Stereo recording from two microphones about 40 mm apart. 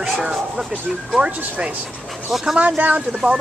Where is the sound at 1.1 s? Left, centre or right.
Right.